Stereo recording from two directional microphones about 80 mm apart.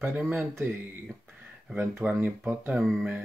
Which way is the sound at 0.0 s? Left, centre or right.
Right.